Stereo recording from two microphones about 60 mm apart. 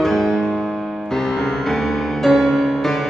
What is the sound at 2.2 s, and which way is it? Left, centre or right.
Music, centre.